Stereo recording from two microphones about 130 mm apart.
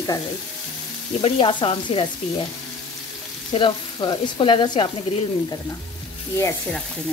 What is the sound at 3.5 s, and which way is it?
Frying, 40° left (ahead or behind).